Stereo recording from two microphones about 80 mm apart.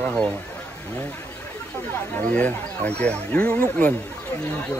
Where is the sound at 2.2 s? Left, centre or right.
Centre.